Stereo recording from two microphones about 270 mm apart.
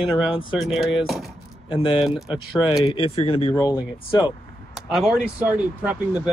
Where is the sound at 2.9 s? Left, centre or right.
Left.